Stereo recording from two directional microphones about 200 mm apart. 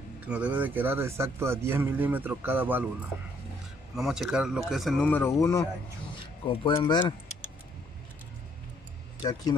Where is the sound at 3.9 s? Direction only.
Centre (ahead or behind); by 5.7 s 15° left (ahead or behind).